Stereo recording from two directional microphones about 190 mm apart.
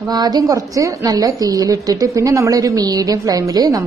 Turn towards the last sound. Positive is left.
turn(degrees=-20)  # may be behind; listen again after turning